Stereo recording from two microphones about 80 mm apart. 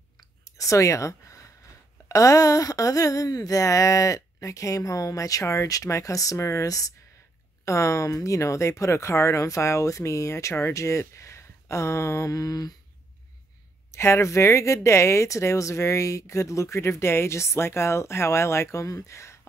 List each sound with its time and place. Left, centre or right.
0.5 s a sound: left
7.6 s speech: left
13.9 s speech: left